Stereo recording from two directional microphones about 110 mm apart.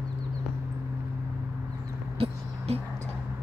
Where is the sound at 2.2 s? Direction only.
70° right (ahead or behind).